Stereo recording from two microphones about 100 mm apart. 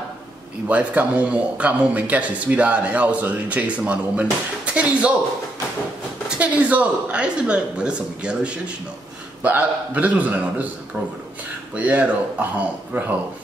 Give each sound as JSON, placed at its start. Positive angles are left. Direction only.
{"t": 0.7, "sound": "speech", "side_deg": -15}
{"t": 6.3, "sound": "speech", "side_deg": -15}
{"t": 11.7, "sound": "speech", "side_deg": -15}